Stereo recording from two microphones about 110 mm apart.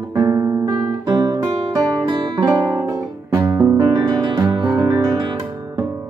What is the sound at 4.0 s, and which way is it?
Music, 40° right (ahead or behind).